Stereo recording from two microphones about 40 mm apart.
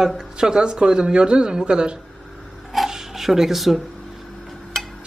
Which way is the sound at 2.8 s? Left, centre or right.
Centre.